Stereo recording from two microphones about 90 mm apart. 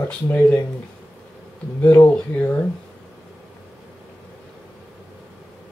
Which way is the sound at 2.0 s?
15° left (ahead or behind).